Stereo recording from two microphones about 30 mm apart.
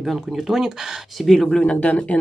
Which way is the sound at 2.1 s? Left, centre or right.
Left.